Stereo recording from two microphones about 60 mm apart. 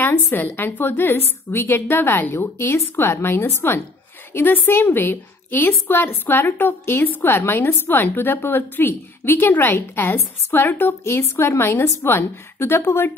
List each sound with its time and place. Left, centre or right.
0.0 s a woman's voice: left
2.3 s a woman's voice: left
11.1 s a woman's voice: left